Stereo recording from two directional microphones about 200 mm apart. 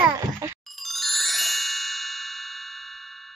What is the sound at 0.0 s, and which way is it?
Music, 10° right (ahead or behind).